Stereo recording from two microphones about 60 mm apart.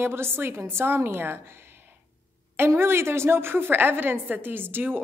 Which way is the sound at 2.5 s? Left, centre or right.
Right.